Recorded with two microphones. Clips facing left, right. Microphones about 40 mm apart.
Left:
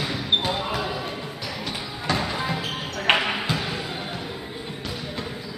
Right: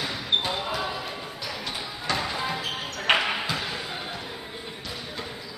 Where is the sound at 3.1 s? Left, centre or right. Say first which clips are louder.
Left 2 dB; centre.